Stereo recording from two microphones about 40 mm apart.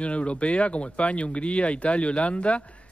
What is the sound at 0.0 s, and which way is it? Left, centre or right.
Speech, left.